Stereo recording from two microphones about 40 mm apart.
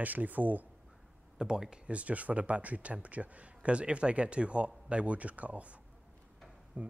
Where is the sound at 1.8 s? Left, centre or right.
Right.